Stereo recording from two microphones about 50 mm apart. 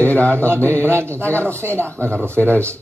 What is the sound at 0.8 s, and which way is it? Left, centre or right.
A man's voice, right.